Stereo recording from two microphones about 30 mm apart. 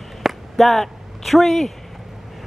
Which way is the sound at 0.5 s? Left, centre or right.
Centre.